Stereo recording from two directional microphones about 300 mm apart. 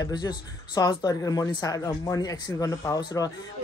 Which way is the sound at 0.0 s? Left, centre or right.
Centre.